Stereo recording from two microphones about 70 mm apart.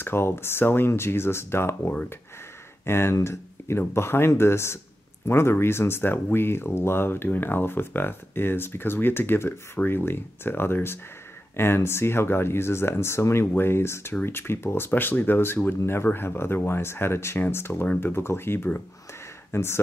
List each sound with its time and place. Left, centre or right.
0.0 s speech: left